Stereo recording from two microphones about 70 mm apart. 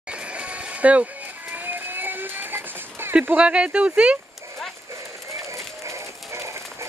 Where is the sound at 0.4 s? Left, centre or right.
Centre.